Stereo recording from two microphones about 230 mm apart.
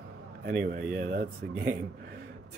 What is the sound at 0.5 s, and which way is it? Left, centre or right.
Speech, right.